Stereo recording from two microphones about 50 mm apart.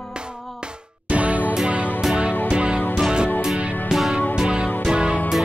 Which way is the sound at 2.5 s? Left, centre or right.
Right.